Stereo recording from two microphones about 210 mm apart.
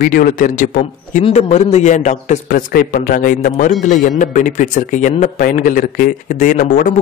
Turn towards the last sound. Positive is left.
turn(degrees=40)  # may be behind; listen again after turning